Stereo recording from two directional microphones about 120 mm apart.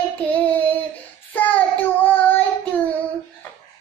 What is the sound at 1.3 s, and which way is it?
Child singing, 15° left (ahead or behind).